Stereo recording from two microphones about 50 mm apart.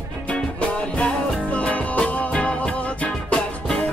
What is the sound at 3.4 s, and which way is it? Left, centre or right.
Music, centre.